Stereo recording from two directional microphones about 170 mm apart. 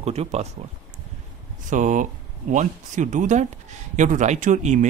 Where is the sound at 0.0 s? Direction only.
40° right (ahead or behind).